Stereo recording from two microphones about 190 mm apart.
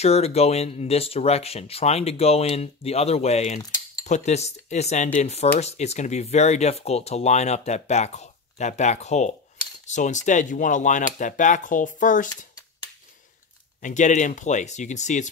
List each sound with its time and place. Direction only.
0.0 s speech: 35° left (ahead or behind)
13.7 s speech: 40° left (ahead or behind)